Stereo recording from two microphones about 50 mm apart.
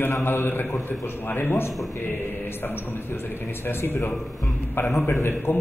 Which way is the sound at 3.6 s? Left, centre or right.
Left.